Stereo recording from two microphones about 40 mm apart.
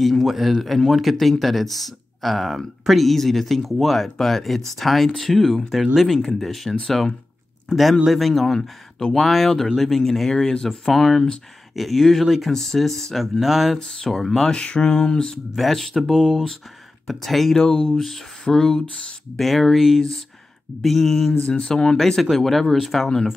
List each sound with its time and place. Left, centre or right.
0.0 s speech: centre
8.1 s speech: centre
12.5 s speech: centre
14.5 s a sound: left
15.5 s speech: centre
17.6 s speech: centre
19.3 s speech: centre
21.5 s speech: left; by 23.0 s centre